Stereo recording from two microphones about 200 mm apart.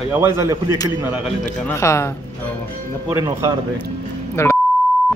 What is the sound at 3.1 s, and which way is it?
Speech, 15° right (ahead or behind).